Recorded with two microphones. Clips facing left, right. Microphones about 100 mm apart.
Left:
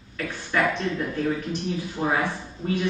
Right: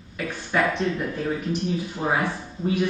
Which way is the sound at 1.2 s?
20° right (ahead or behind).